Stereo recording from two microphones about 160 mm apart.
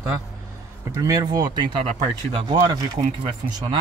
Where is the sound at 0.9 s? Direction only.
20° right (ahead or behind).